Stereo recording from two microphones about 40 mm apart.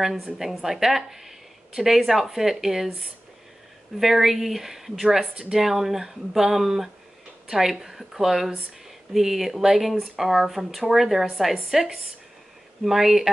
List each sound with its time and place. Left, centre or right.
0.4 s speech: centre
4.0 s speech: centre
5.2 s speech: right
5.5 s a woman's voice: centre